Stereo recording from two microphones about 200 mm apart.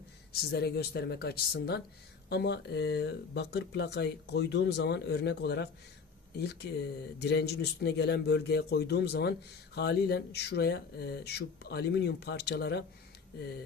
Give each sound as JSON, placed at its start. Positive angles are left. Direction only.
{"t": 0.3, "sound": "speech", "side_deg": 50}